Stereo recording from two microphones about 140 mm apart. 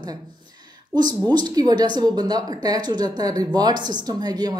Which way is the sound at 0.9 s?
30° right (ahead or behind).